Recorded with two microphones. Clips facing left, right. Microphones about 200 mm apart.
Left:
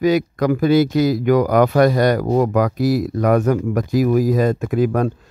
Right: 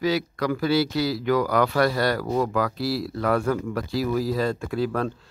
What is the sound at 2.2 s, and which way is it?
Speech, 40° left (ahead or behind).